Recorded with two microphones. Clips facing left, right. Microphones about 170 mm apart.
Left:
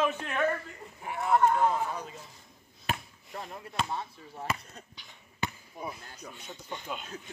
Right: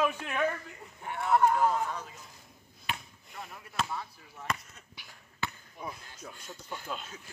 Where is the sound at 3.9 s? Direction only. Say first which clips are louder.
Left 3 dB; 25° left (ahead or behind).